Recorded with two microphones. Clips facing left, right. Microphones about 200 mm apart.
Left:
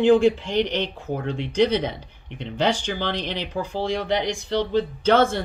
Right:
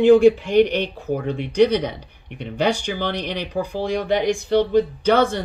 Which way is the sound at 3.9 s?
55° right (ahead or behind).